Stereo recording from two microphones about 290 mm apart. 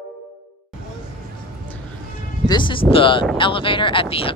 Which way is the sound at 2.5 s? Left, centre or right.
Centre.